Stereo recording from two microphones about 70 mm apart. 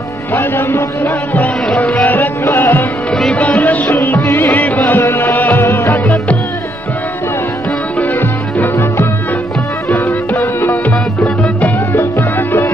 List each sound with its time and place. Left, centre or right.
0.3 s a man's voice: left
1.8 s a sound: centre
2.4 s music: left
3.1 s music: centre
3.3 s music: left
8.0 s music: left
9.8 s music: left